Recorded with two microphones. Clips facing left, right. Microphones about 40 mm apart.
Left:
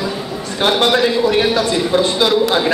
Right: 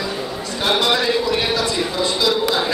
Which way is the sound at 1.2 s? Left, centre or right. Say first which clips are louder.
Left 5 dB; left.